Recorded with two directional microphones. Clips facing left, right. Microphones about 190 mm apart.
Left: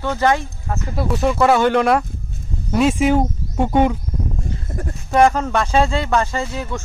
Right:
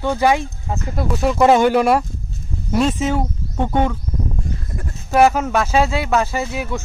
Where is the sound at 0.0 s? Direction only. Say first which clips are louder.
Right 1 dB; 10° right (ahead or behind).